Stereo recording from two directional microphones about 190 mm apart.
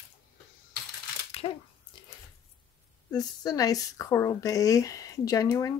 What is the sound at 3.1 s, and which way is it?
Speech, 20° left (ahead or behind).